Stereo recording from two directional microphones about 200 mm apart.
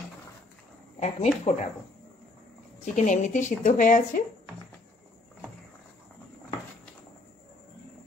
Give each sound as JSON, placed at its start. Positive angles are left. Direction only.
{"t": 0.9, "sound": "speech", "side_deg": 30}
{"t": 2.8, "sound": "speech", "side_deg": 40}